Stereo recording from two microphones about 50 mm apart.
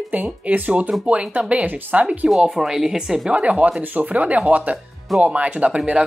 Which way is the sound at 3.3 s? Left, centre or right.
Right.